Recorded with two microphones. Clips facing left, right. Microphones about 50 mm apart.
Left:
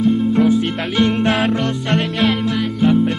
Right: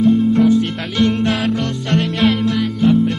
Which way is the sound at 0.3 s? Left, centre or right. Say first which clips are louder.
Right 1 dB; centre.